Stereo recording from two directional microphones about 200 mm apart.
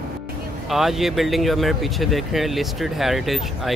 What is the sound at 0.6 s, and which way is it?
Speech, centre (ahead or behind).